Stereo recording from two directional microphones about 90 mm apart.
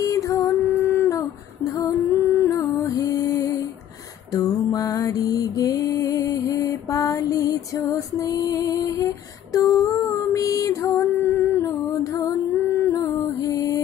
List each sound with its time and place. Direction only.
0.0 s music: 35° left (ahead or behind)
0.7 s a sound: 25° left (ahead or behind)
1.1 s female singing: 40° left (ahead or behind)
4.3 s music: 40° left (ahead or behind)
10.0 s female singing: 40° left (ahead or behind)
12.6 s music: 40° left (ahead or behind)